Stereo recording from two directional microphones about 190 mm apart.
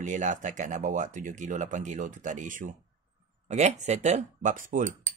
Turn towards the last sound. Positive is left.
turn(degrees=-45)  # may be behind; listen again after turning